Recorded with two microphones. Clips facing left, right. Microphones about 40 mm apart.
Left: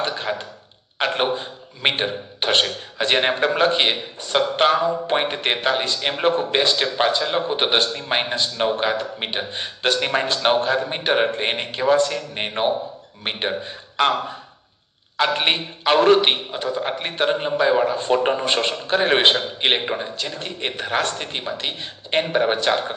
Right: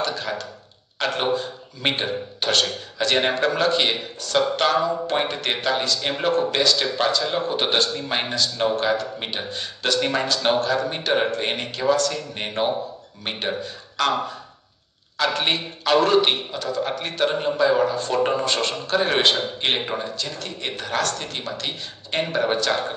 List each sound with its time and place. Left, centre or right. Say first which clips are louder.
0.0 s a man's voice: left 2 dB; left
15.1 s a man's voice: left 2 dB; left